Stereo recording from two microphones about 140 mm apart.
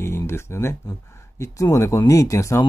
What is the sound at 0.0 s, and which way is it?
Speech, 20° left (ahead or behind).